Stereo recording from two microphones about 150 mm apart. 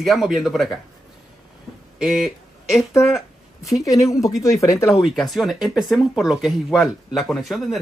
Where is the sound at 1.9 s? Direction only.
5° right (ahead or behind).